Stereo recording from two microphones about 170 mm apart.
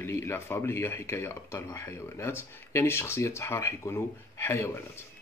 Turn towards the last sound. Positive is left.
turn(degrees=15)  # may be behind; listen again after turning